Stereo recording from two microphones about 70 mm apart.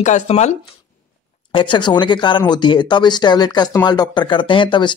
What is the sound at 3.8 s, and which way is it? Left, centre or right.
Speech, left.